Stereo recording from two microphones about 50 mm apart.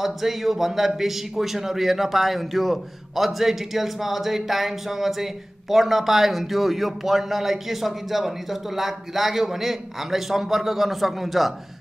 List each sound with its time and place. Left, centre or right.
0.0 s a man's voice: centre